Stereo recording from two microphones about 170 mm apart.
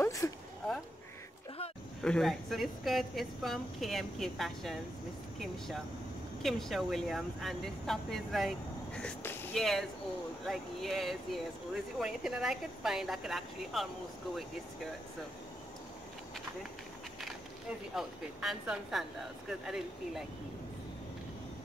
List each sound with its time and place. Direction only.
0.0 s a sound: 20° left (ahead or behind)
2.0 s speech: centre (ahead or behind)
6.4 s speech: centre (ahead or behind)
9.6 s speech: centre (ahead or behind)
17.9 s speech: centre (ahead or behind)